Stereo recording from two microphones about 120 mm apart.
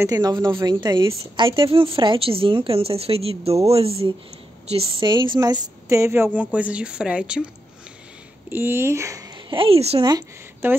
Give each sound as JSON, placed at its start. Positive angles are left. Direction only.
{"t": 0.0, "sound": "a woman's voice", "side_deg": -35}
{"t": 5.0, "sound": "a woman's voice", "side_deg": -40}
{"t": 5.9, "sound": "a woman's voice", "side_deg": -25}
{"t": 8.5, "sound": "speech", "side_deg": -20}
{"t": 9.5, "sound": "a woman's voice", "side_deg": -50}
{"t": 10.6, "sound": "speech", "side_deg": -20}